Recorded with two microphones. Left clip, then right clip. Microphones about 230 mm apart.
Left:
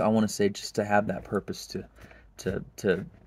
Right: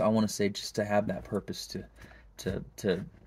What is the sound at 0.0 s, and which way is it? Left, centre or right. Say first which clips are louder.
Speech: left 3 dB; centre.